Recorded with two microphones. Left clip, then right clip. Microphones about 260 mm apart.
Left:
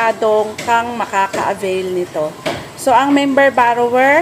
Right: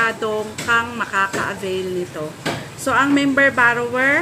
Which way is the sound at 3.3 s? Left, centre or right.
Left.